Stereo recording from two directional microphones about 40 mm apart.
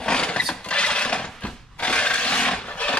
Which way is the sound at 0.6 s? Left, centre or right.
Left.